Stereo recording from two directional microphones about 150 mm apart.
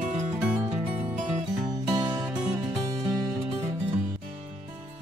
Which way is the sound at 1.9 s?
30° right (ahead or behind).